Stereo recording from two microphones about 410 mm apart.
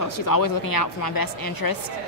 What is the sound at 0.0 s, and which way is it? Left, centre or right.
Speech, left.